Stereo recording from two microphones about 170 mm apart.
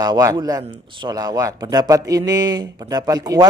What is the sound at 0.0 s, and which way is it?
A man's voice, 20° right (ahead or behind).